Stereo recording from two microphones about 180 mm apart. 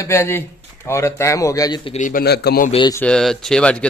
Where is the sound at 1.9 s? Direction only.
45° left (ahead or behind); by 2.6 s 65° left (ahead or behind).